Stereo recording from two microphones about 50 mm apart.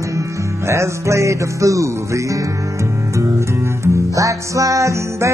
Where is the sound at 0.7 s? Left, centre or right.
Right.